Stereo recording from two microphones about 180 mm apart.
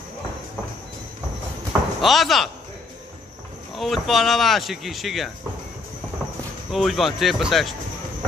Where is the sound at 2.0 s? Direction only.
Centre (ahead or behind).